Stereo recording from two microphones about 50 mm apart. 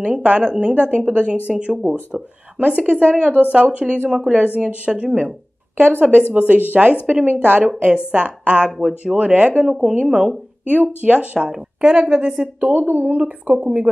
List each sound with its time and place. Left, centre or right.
0.0 s a woman's voice: right
2.6 s a woman's voice: right
5.8 s a woman's voice: right
9.6 s a woman's voice: centre
11.3 s a woman's voice: centre
12.5 s a woman's voice: right